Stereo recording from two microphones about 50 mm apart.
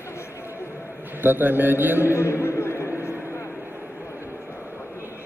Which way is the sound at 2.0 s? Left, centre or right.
Left.